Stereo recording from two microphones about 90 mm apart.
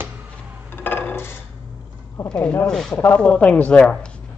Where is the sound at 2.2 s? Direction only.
15° left (ahead or behind).